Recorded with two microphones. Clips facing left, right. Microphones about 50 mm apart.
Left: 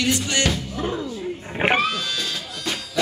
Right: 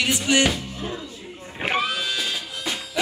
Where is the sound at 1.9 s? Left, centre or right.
Centre.